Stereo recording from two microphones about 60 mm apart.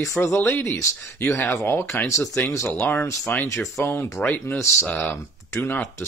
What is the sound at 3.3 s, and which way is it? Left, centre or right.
Speech, left.